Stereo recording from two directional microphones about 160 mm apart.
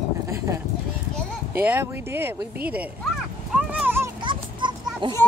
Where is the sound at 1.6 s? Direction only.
10° right (ahead or behind).